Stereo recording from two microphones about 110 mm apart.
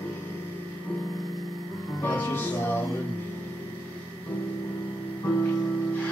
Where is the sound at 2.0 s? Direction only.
15° left (ahead or behind).